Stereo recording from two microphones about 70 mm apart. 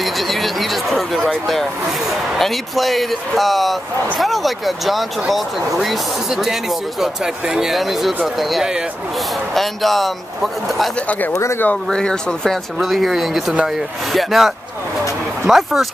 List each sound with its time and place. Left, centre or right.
0.0 s a sound: centre
1.5 s speech: centre
11.0 s speech: left
11.3 s speech: left
11.9 s speech: centre